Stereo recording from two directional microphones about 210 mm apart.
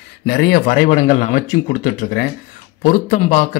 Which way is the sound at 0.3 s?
45° left (ahead or behind).